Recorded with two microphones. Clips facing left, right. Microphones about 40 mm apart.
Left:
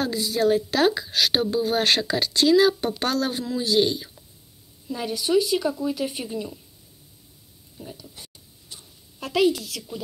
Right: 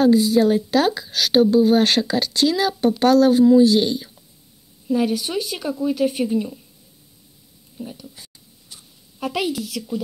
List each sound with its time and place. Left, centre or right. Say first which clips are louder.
0.0 s speech: right 8 dB; centre
0.7 s speech: right 2 dB; centre
4.8 s speech: right 6 dB; centre
7.7 s a sound: right 6 dB; centre
8.2 s a sound: even; left
9.2 s speech: left 2 dB; centre